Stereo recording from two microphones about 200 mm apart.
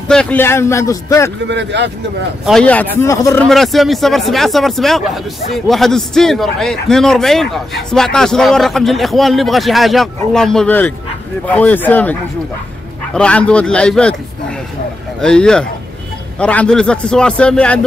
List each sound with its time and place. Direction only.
0.1 s a man's voice: 5° left (ahead or behind)
1.5 s speech: 60° right (ahead or behind)
2.4 s a man's voice: 5° left (ahead or behind)
3.4 s a man's voice: centre (ahead or behind)
15.1 s a man's voice: 5° left (ahead or behind)